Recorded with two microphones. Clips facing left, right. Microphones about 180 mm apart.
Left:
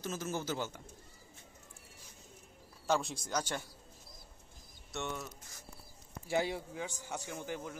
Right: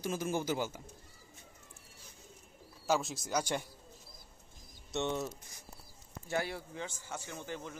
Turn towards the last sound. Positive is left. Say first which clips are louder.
# left 2 dB
turn(degrees=10)  # may be behind; listen again after turning